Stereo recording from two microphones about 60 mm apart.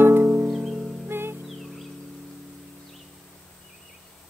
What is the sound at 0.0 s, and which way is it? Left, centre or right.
Music, right.